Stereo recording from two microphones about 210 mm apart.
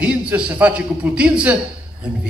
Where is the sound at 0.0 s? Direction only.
5° right (ahead or behind).